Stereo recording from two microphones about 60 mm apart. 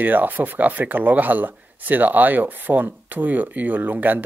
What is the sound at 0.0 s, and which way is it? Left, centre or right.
Speech, right.